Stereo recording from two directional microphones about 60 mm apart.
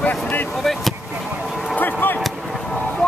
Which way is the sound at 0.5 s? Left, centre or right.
Centre.